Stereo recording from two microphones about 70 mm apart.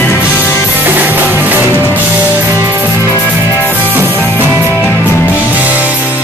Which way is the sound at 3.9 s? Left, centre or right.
Right.